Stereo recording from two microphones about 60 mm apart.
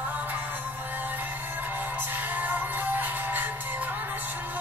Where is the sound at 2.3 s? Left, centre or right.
Right.